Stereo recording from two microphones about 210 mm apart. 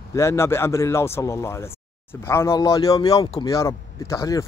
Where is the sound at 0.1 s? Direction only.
15° left (ahead or behind).